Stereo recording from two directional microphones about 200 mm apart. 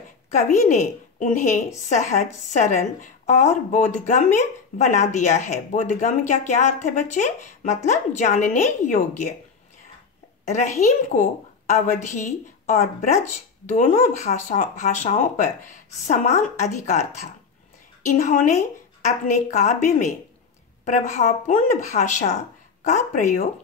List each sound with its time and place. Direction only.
0.3 s a woman's voice: 35° left (ahead or behind)
10.4 s a woman's voice: 35° left (ahead or behind)